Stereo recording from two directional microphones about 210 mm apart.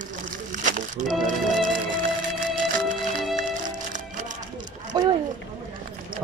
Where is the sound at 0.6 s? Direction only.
40° right (ahead or behind).